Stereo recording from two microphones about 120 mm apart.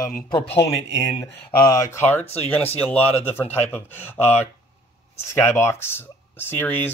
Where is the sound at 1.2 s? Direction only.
30° left (ahead or behind).